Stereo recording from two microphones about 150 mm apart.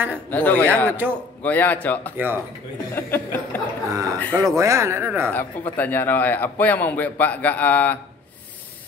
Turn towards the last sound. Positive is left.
turn(degrees=10)  # may be behind; listen again after turning